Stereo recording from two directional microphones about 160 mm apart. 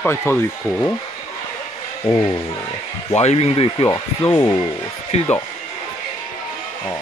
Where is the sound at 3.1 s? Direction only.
40° left (ahead or behind).